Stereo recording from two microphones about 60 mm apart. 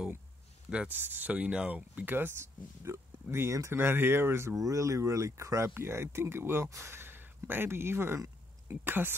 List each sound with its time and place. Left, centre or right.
0.8 s speech: right
3.7 s speech: right
4.6 s speech: right